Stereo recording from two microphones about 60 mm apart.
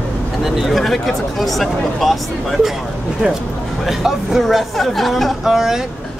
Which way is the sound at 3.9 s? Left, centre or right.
Centre.